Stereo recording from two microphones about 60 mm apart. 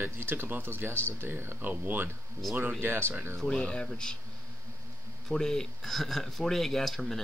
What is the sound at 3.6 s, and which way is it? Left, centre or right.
Speech, centre.